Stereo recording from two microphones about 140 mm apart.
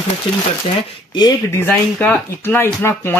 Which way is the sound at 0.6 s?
30° left (ahead or behind).